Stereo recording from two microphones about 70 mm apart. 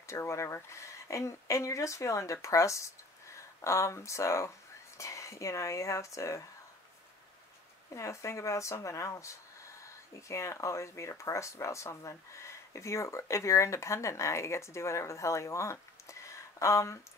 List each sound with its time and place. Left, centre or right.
0.0 s speech: left
7.9 s speech: left